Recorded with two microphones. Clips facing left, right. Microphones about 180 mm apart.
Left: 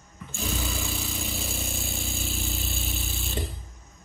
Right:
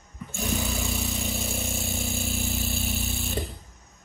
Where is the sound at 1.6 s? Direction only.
20° right (ahead or behind).